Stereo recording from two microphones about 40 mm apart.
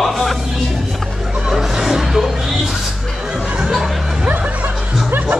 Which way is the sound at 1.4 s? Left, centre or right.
Centre.